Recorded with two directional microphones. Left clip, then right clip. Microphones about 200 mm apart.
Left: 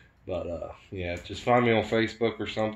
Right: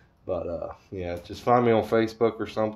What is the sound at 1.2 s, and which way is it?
Speech, 35° right (ahead or behind).